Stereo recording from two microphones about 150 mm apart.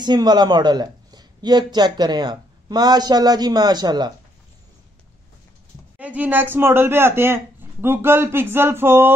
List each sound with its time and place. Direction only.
0.0 s speech: 30° right (ahead or behind)
5.9 s speech: 10° right (ahead or behind)